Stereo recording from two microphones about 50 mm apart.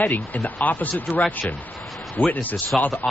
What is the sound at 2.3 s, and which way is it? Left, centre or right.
Speech, left.